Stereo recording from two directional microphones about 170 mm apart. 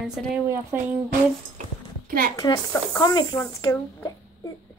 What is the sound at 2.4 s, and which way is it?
A woman's voice, 20° left (ahead or behind).